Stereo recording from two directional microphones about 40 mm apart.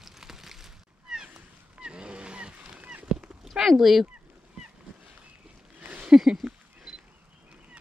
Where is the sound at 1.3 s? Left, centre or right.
Right.